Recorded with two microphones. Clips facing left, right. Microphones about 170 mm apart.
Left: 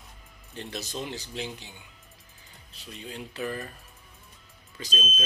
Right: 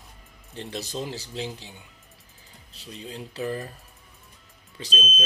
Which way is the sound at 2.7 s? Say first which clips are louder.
Right 2 dB; 35° right (ahead or behind).